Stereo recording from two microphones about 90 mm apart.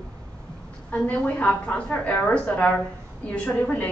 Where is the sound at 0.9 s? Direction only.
15° left (ahead or behind).